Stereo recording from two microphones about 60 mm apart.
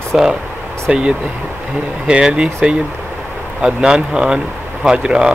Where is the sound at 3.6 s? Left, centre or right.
Centre.